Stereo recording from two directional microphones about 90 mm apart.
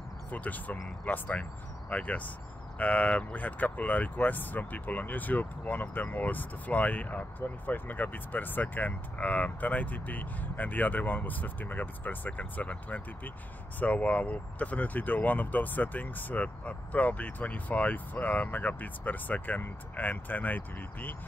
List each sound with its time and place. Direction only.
0.3 s speech: 20° left (ahead or behind)